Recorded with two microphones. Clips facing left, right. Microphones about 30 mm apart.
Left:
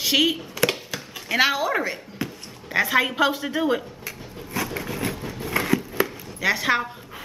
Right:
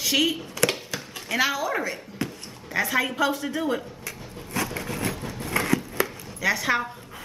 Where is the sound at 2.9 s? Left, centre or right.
Left.